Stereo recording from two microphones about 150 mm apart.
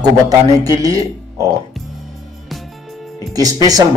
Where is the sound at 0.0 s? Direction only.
25° right (ahead or behind).